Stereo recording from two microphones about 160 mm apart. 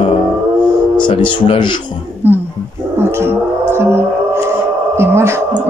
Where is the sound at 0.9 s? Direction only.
30° left (ahead or behind).